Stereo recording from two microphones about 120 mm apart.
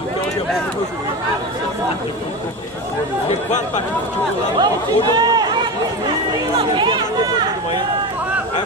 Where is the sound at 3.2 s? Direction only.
70° left (ahead or behind).